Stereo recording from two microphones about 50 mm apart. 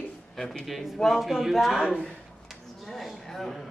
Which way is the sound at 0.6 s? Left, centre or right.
Centre.